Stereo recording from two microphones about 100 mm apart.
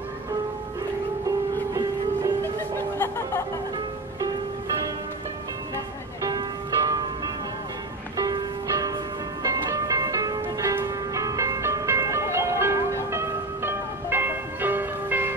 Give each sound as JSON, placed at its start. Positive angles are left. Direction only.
{"t": 2.8, "sound": "a sound", "side_deg": 20}
{"t": 6.2, "sound": "music", "side_deg": -40}
{"t": 8.2, "sound": "music", "side_deg": -40}